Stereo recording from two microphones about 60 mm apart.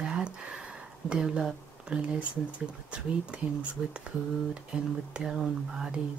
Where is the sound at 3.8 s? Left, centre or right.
Centre.